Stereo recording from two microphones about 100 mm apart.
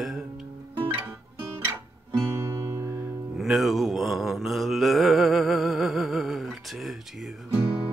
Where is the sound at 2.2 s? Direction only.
30° right (ahead or behind).